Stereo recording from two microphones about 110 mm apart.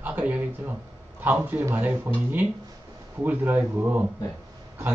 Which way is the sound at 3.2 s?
15° right (ahead or behind).